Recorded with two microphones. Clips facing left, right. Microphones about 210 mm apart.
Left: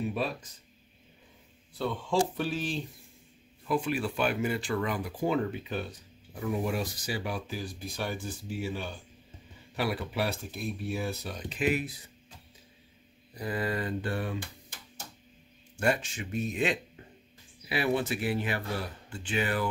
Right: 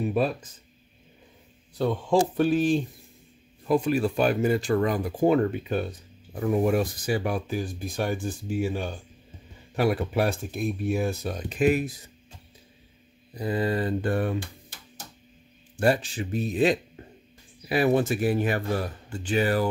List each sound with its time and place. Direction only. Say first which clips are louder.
0.0 s speech: right 7 dB; 50° right (ahead or behind)
1.8 s speech: right 6 dB; 45° right (ahead or behind)
13.3 s mantra: right 6 dB; 25° right (ahead or behind)
14.0 s speech: right 7 dB; 50° right (ahead or behind)
15.7 s speech: right 6 dB; 35° right (ahead or behind)